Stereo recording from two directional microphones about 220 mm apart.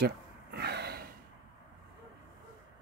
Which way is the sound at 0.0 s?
50° right (ahead or behind).